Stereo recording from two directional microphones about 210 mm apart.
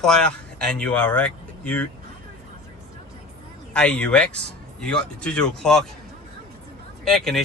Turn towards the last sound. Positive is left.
turn(degrees=0)  # may be behind; listen again after turning